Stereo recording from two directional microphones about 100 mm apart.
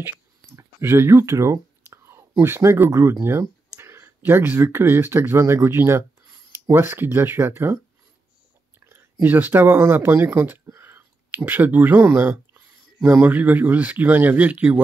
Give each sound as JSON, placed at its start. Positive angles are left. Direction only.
{"t": 0.6, "sound": "whispering", "side_deg": -25}
{"t": 2.4, "sound": "speech", "side_deg": -25}
{"t": 8.7, "sound": "a sound", "side_deg": -25}
{"t": 9.2, "sound": "speech", "side_deg": -20}